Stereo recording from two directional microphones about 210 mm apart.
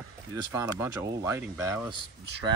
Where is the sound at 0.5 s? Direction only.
15° right (ahead or behind).